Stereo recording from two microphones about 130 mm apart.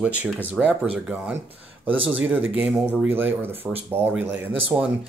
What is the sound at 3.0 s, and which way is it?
Speech, 15° right (ahead or behind).